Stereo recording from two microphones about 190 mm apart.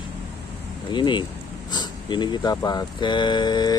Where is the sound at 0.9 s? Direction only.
25° left (ahead or behind).